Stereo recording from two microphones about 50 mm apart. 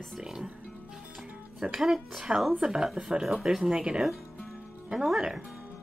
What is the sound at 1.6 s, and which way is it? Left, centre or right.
Speech, centre.